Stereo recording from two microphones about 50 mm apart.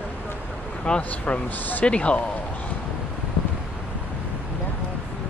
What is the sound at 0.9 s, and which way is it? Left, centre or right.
Speech, left.